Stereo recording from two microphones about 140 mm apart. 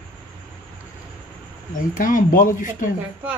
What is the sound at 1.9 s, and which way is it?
Speech, 80° left.